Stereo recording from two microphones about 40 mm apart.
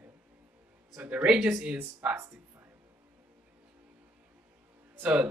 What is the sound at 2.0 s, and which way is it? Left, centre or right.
Speech, right.